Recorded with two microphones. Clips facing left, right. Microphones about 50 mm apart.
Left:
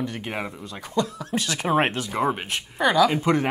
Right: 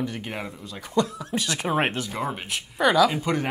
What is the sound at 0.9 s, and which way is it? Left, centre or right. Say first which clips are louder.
Speech: right 1 dB; right.